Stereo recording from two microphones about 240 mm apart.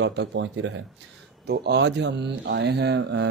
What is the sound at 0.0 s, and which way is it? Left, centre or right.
Speech, right.